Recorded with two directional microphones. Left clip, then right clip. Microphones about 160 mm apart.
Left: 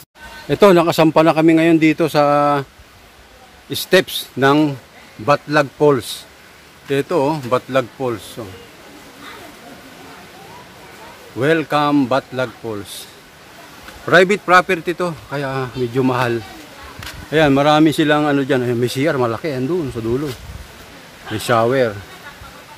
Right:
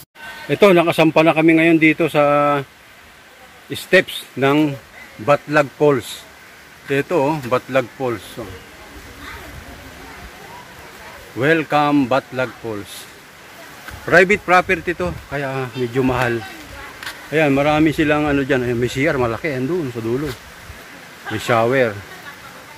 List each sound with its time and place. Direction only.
0.5 s speech: 15° left (ahead or behind)
3.7 s speech: 20° left (ahead or behind)
5.2 s speech: 5° left (ahead or behind)
8.4 s a man's voice: centre (ahead or behind)
11.3 s speech: 10° left (ahead or behind)
14.0 s a man's voice: 10° left (ahead or behind)
17.3 s speech: 25° left (ahead or behind)
21.4 s speech: 15° left (ahead or behind)